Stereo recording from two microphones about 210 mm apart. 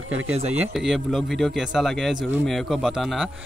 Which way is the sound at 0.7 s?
Centre (ahead or behind).